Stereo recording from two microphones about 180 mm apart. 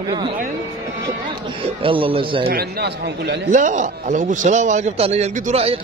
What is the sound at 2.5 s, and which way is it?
Speech, 60° right (ahead or behind).